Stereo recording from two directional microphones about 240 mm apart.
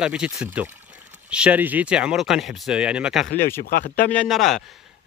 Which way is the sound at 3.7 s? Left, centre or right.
Left.